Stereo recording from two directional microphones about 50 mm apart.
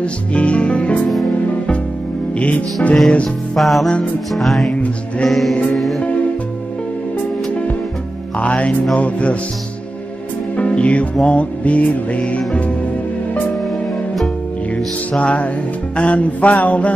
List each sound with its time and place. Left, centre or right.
0.0 s music: left
2.3 s music: left
3.5 s music: centre
8.4 s music: left
10.5 s music: left
15.1 s music: left